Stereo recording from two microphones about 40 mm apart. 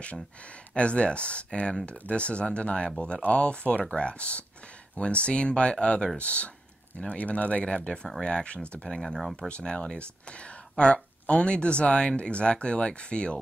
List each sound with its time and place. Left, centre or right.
0.7 s speech: left
7.6 s speech: left